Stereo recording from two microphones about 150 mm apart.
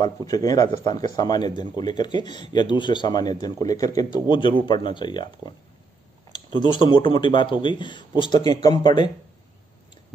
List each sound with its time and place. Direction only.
0.0 s a man's voice: 25° left (ahead or behind)